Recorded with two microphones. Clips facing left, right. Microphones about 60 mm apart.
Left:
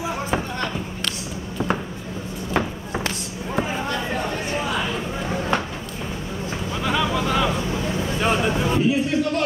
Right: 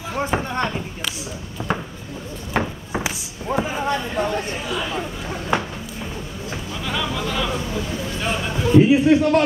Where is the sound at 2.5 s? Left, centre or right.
Centre.